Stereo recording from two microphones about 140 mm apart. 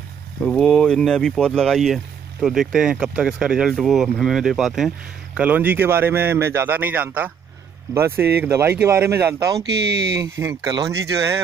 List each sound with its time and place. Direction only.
0.5 s speech: 5° left (ahead or behind); by 11.4 s 20° right (ahead or behind)